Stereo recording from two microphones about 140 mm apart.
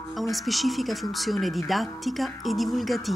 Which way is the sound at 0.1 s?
Centre (ahead or behind).